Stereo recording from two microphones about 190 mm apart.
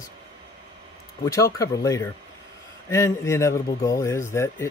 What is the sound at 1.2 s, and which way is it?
Speech, 15° left (ahead or behind).